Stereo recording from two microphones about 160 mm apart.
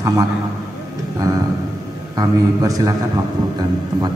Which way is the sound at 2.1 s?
20° right (ahead or behind).